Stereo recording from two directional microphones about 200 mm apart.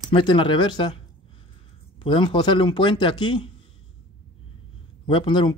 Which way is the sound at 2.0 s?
25° left (ahead or behind).